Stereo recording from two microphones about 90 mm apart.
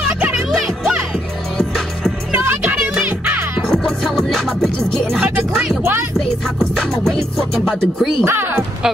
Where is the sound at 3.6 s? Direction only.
5° left (ahead or behind).